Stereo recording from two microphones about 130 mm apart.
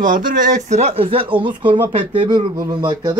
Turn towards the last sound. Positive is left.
turn(degrees=-35)  # may be behind; listen again after turning